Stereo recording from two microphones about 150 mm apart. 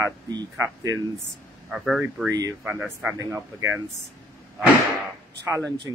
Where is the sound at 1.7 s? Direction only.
Centre (ahead or behind).